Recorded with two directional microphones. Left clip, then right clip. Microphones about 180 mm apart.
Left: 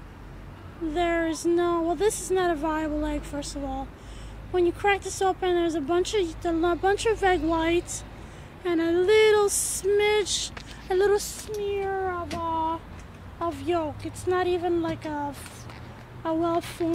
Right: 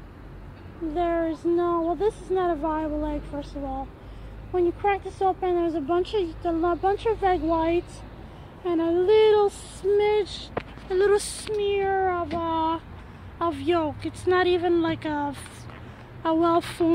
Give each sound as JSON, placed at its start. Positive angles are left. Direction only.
{"t": 0.9, "sound": "speech", "side_deg": 10}
{"t": 10.9, "sound": "speech", "side_deg": 35}
{"t": 11.6, "sound": "speech", "side_deg": -20}